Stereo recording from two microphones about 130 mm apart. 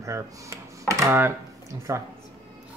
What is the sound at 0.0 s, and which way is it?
Speech, 25° right (ahead or behind).